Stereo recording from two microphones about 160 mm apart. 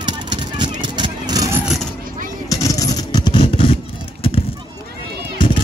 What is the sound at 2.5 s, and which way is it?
Vehicle, 20° left (ahead or behind).